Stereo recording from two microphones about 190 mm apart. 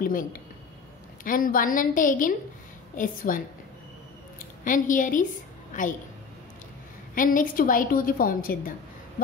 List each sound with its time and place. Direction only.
0.0 s a woman's voice: 45° left (ahead or behind)
4.6 s a woman's voice: 45° left (ahead or behind)
7.2 s a woman's voice: 45° left (ahead or behind)